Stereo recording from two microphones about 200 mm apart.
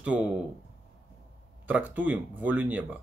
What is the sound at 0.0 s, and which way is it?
Speech, 5° right (ahead or behind).